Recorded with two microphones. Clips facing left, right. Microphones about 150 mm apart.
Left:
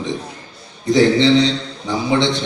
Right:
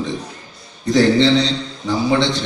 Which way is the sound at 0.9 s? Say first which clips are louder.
Left 1 dB; 20° left (ahead or behind).